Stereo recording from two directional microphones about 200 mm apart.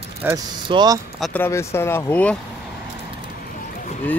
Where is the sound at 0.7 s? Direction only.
20° right (ahead or behind).